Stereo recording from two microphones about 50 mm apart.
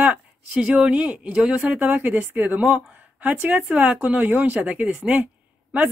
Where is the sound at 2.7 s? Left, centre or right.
Right.